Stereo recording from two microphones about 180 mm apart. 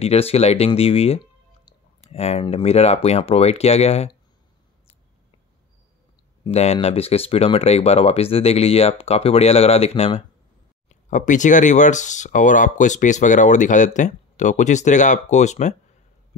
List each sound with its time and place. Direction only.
0.0 s speech: 35° left (ahead or behind)
6.5 s speech: 35° left (ahead or behind)